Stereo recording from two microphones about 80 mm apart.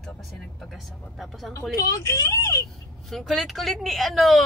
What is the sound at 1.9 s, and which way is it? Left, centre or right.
Speech, left.